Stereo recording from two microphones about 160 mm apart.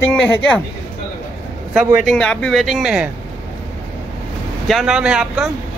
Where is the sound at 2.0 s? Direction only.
5° left (ahead or behind).